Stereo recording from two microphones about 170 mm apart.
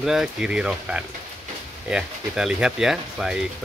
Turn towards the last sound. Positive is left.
turn(degrees=-5)  # may be behind; listen again after turning